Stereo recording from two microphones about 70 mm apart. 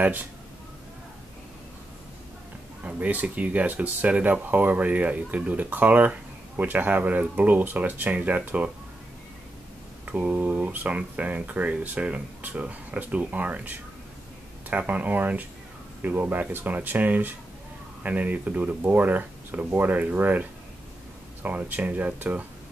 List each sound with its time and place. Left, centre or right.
0.0 s speech: right
2.8 s speech: centre
10.0 s speech: right